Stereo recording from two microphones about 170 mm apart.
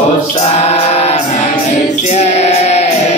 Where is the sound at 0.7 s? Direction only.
40° left (ahead or behind).